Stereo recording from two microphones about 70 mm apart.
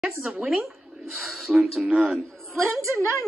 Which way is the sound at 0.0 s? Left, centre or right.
Centre.